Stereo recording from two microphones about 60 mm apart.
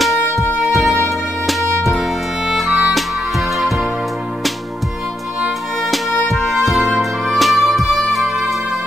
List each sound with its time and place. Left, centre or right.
0.0 s music: centre
5.4 s music: centre